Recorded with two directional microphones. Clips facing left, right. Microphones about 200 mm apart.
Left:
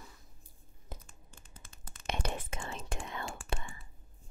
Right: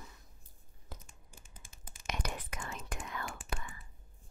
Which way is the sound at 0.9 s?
20° left (ahead or behind).